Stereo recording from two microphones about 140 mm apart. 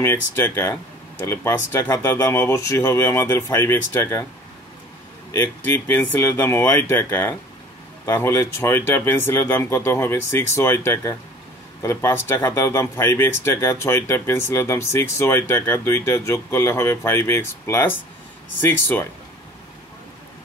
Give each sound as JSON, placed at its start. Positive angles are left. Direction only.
{"t": 0.0, "sound": "speech", "side_deg": 20}
{"t": 5.4, "sound": "speech", "side_deg": 15}